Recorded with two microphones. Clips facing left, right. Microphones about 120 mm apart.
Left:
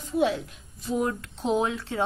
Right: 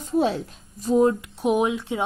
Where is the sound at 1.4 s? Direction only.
15° right (ahead or behind).